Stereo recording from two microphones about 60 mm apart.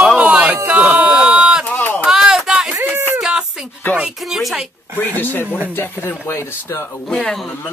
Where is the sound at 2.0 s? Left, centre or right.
Centre.